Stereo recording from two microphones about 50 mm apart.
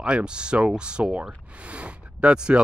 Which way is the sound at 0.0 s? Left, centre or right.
Centre.